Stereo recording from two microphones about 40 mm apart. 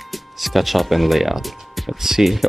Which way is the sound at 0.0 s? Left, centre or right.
Centre.